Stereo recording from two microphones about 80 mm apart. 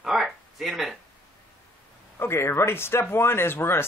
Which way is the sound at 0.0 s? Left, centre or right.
Centre.